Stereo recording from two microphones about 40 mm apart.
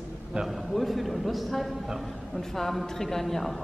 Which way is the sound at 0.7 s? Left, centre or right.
Centre.